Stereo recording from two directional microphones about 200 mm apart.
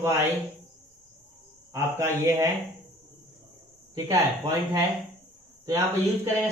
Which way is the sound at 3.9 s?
15° right (ahead or behind).